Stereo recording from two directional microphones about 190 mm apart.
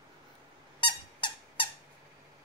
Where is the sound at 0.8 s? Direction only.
25° left (ahead or behind).